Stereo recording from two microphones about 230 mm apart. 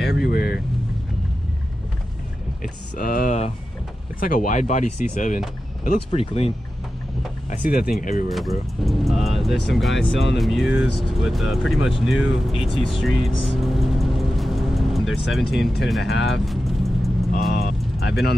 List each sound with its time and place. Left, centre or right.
0.0 s speech: left
2.6 s speech: left
8.3 s speech: centre
13.4 s vehicle: centre
17.5 s vehicle: left